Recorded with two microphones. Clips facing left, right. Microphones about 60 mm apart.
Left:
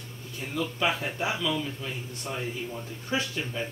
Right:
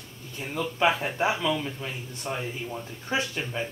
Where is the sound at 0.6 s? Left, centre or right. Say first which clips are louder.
Right 4 dB; right.